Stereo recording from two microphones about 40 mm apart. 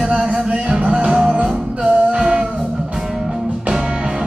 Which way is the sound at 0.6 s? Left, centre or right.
Right.